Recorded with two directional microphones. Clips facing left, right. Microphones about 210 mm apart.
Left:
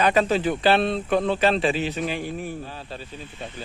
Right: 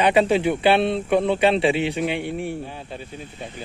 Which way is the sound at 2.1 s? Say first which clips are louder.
Right 3 dB; 70° right (ahead or behind).